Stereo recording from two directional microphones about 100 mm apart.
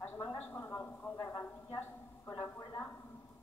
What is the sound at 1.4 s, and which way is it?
Speech, 20° left (ahead or behind).